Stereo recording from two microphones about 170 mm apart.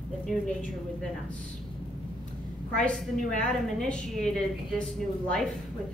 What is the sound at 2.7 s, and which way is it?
A woman's voice, 5° left (ahead or behind).